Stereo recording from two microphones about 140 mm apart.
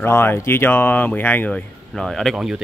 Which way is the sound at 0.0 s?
15° left (ahead or behind).